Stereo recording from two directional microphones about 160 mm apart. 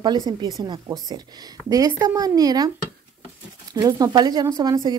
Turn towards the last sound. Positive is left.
turn(degrees=-25)  # may be behind; listen again after turning